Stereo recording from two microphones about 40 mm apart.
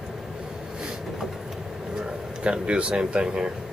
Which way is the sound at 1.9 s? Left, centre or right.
Right.